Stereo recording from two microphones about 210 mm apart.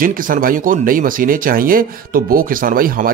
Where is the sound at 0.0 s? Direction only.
40° right (ahead or behind).